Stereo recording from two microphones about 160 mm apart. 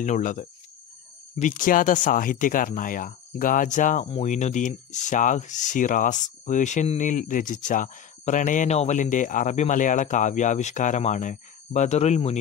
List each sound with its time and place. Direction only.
0.0 s speech: 50° left (ahead or behind)